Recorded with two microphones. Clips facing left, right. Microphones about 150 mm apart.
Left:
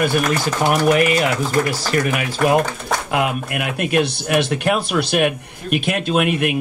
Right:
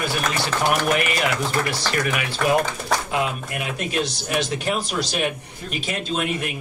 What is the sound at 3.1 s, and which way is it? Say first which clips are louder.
Speech: left 4 dB; 65° left (ahead or behind).